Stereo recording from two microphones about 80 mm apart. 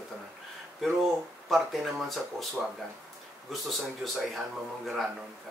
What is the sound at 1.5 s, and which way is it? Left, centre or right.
Speech, centre.